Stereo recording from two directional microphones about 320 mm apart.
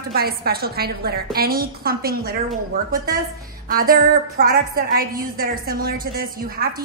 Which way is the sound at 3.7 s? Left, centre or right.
Right.